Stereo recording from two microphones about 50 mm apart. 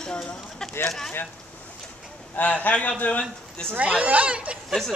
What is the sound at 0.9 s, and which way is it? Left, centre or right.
Speech, centre.